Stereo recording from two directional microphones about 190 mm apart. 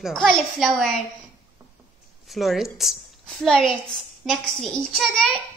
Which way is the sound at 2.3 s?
Centre (ahead or behind).